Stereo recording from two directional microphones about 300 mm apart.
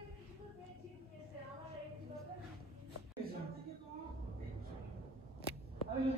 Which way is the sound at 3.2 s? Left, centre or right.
Right.